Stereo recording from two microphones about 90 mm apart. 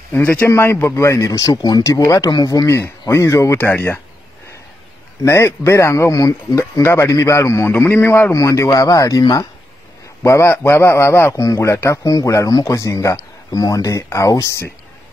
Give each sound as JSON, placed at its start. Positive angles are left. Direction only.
{"t": 0.1, "sound": "a man's voice", "side_deg": 15}
{"t": 1.5, "sound": "speech", "side_deg": 50}
{"t": 5.2, "sound": "a man's voice", "side_deg": 30}
{"t": 6.8, "sound": "a man's voice", "side_deg": 25}
{"t": 10.2, "sound": "a man's voice", "side_deg": 30}